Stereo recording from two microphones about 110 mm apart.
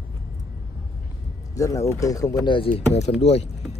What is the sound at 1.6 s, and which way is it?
Speech, 30° left (ahead or behind).